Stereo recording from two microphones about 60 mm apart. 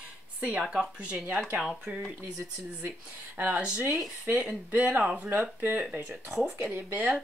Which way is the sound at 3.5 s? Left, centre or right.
Centre.